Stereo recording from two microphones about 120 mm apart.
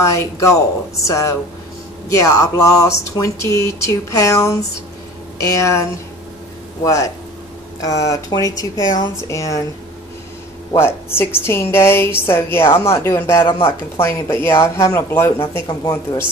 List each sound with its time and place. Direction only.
0.0 s a woman's voice: 25° left (ahead or behind)
10.8 s a woman's voice: 20° left (ahead or behind)
13.4 s speech: 50° left (ahead or behind)
13.7 s a woman's voice: 20° left (ahead or behind)
15.6 s speech: 35° left (ahead or behind)